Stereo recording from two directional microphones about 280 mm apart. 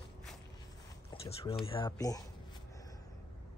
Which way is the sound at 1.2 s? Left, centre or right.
Left.